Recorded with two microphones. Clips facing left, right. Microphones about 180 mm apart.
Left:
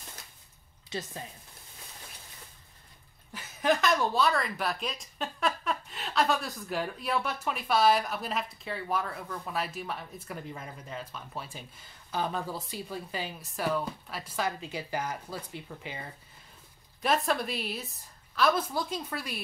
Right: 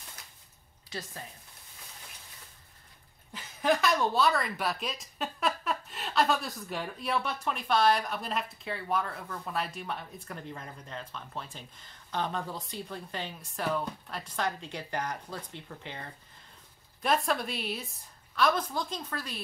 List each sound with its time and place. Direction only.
0.8 s a woman's voice: 20° left (ahead or behind)
3.3 s speech: centre (ahead or behind)